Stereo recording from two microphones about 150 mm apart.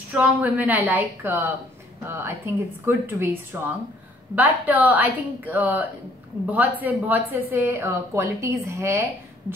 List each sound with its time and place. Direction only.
0.1 s a woman's voice: 10° right (ahead or behind)